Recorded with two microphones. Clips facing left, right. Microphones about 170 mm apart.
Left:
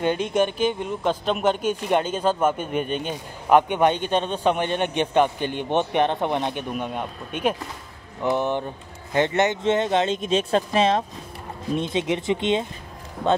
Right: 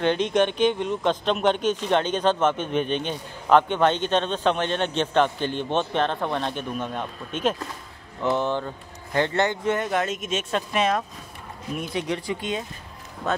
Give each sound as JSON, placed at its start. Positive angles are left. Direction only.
{"t": 0.0, "sound": "speech", "side_deg": 5}